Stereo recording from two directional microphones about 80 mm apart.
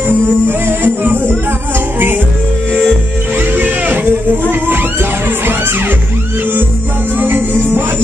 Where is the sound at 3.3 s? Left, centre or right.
Right.